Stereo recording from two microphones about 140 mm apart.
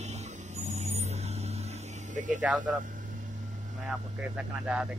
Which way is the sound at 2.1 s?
65° right (ahead or behind).